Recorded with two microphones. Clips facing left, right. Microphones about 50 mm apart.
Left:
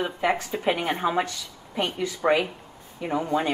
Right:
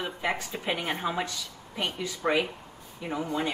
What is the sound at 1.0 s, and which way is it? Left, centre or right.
Speech, left.